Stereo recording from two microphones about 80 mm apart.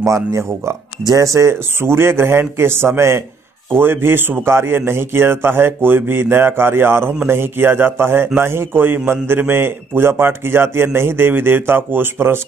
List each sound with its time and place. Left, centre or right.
0.0 s a man's voice: right